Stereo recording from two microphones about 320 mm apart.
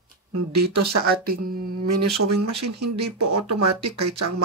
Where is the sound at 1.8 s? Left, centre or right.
Right.